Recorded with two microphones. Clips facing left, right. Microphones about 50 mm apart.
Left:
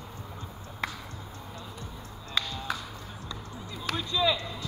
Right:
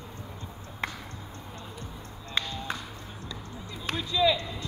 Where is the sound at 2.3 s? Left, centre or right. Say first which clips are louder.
Even; right.